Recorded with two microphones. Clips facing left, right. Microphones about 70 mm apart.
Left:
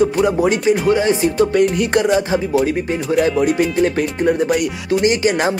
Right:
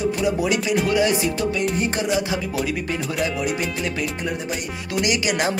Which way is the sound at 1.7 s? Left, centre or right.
Left.